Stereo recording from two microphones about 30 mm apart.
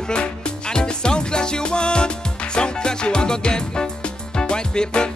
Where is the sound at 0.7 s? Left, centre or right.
Left.